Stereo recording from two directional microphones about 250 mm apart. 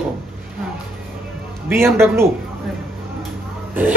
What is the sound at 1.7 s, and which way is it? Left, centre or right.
Speech, centre.